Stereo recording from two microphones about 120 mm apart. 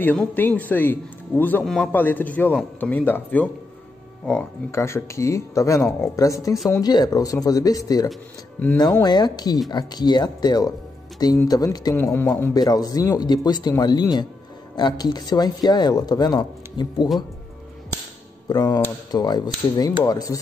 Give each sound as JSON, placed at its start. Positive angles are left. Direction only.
{"t": 0.0, "sound": "a man's voice", "side_deg": 15}
{"t": 1.6, "sound": "a man's voice", "side_deg": 5}
{"t": 1.9, "sound": "a man's voice", "side_deg": 15}
{"t": 4.6, "sound": "speech", "side_deg": 25}
{"t": 11.9, "sound": "speech", "side_deg": 20}
{"t": 12.5, "sound": "speech", "side_deg": 30}
{"t": 18.5, "sound": "speech", "side_deg": 35}